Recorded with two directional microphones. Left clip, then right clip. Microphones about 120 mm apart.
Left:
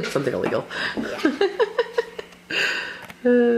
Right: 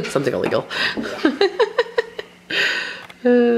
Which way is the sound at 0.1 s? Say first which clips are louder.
Right 5 dB; 25° right (ahead or behind).